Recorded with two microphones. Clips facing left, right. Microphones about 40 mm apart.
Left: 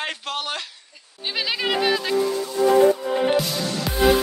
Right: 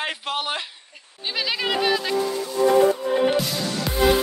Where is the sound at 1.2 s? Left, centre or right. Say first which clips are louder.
Even; centre.